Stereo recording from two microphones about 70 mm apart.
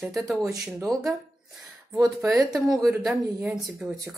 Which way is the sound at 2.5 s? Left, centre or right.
Centre.